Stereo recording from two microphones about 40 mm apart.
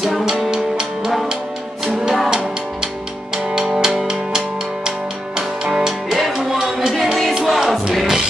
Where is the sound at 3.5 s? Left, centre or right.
Centre.